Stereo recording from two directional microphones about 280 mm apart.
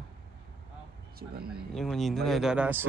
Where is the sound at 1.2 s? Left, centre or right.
Right.